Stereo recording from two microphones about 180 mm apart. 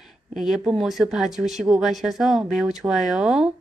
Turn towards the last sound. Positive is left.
turn(degrees=0)  # may be behind; listen again after turning